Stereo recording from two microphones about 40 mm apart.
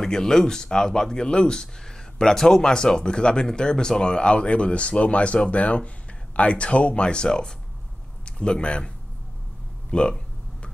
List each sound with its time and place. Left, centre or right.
0.0 s speech: centre